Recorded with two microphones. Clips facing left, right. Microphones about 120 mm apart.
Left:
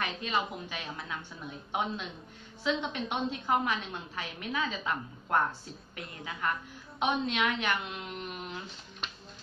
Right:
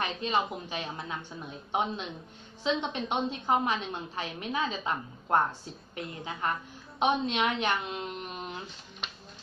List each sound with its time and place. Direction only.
0.0 s a woman's voice: 25° right (ahead or behind)